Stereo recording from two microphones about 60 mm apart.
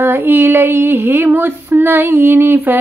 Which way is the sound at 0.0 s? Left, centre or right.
Right.